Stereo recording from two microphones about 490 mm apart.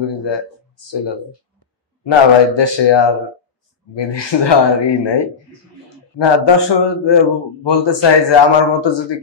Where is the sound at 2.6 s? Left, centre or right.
Left.